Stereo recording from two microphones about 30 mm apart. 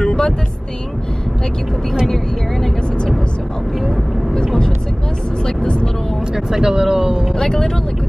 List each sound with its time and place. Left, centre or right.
0.0 s vehicle: left
6.3 s speech: centre
7.3 s speech: left